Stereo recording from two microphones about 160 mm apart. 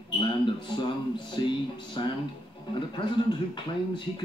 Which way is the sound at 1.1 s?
30° left (ahead or behind).